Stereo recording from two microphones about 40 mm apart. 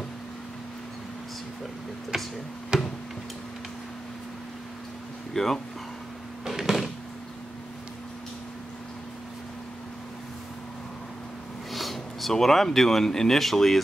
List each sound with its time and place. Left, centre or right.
2.1 s speech: centre
2.7 s tick-tock: right
5.3 s speech: centre
6.4 s a sound: centre
11.7 s speech: centre